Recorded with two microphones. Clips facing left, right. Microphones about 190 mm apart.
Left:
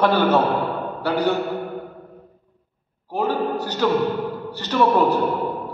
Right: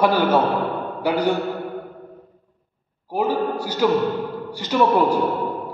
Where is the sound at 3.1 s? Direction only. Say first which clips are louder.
Right 1 dB; 10° right (ahead or behind).